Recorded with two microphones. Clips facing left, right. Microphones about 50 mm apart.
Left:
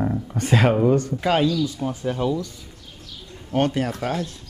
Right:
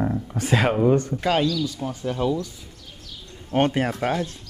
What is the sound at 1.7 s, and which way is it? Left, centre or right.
Speech, left.